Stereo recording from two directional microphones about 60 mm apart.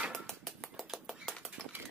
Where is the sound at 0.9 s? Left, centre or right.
Centre.